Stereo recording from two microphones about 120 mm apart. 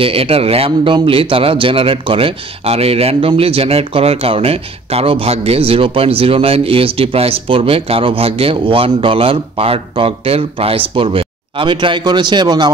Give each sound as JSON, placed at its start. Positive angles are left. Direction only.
{"t": 0.0, "sound": "a man's voice", "side_deg": -55}